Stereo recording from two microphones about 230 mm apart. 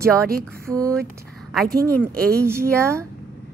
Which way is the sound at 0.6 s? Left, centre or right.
Centre.